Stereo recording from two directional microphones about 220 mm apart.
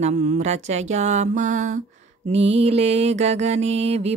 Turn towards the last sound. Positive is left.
turn(degrees=-30)  # may be behind; listen again after turning